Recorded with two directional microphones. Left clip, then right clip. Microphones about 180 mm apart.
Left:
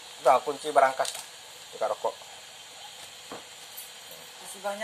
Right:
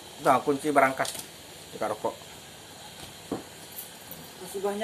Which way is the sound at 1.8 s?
5° right (ahead or behind).